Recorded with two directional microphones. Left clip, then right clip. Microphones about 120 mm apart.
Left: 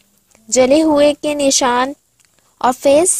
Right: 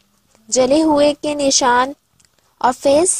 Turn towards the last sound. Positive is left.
turn(degrees=20)  # may be behind; listen again after turning